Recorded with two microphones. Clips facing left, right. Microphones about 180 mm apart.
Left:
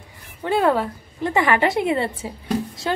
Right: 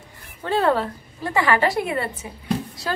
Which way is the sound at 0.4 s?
15° left (ahead or behind).